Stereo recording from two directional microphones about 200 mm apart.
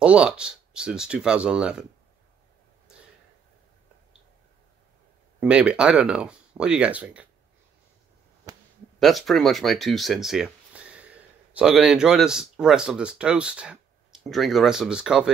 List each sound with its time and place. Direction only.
0.0 s speech: 5° right (ahead or behind)
5.4 s speech: 5° right (ahead or behind)
8.5 s a sound: 20° right (ahead or behind)
9.0 s speech: centre (ahead or behind)